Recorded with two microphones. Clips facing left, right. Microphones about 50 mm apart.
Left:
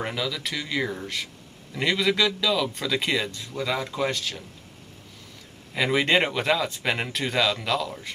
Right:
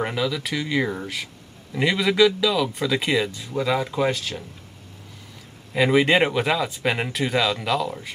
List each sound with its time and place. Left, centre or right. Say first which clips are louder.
0.0 s speech: right 4 dB; centre
5.8 s speech: right 4 dB; centre